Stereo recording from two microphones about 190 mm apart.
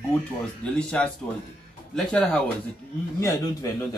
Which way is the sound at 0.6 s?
5° left (ahead or behind).